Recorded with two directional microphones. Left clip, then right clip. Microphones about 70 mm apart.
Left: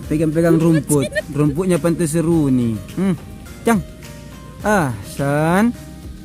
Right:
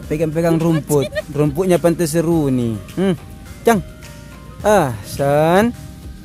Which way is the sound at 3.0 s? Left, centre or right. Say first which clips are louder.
Right 4 dB; right.